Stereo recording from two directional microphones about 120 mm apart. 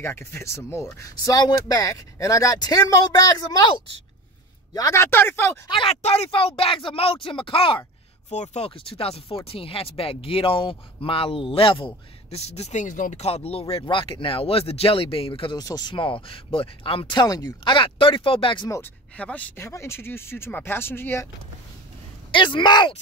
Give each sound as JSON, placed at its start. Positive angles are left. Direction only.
{"t": 0.0, "sound": "speech", "side_deg": 20}
{"t": 4.7, "sound": "speech", "side_deg": 25}
{"t": 5.7, "sound": "speech", "side_deg": 45}
{"t": 6.0, "sound": "speech", "side_deg": 55}
{"t": 8.3, "sound": "speech", "side_deg": 65}
{"t": 15.5, "sound": "speech", "side_deg": 35}
{"t": 17.7, "sound": "speech", "side_deg": 45}
{"t": 19.1, "sound": "speech", "side_deg": 10}
{"t": 22.3, "sound": "speech", "side_deg": 45}